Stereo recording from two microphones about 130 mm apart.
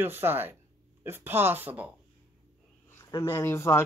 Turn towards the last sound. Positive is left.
turn(degrees=20)  # may be behind; listen again after turning